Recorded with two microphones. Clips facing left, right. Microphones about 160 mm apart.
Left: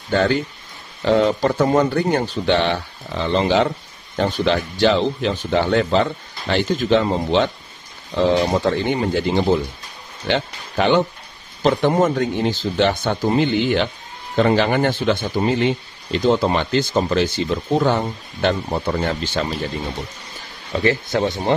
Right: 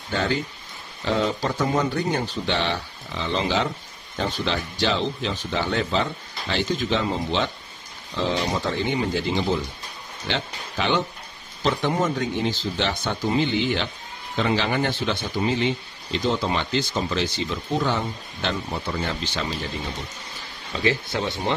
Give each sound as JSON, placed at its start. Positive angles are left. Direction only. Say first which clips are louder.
{"t": 1.0, "sound": "speech", "louder": "left 7 dB", "side_deg": 65}
{"t": 20.7, "sound": "speech", "louder": "left 5 dB", "side_deg": 55}